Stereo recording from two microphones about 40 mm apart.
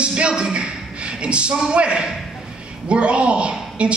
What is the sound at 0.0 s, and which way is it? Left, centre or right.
A man's voice, right.